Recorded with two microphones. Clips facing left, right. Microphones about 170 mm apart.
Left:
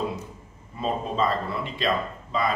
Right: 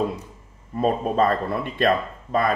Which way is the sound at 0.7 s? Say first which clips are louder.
Right 6 dB; 55° right (ahead or behind).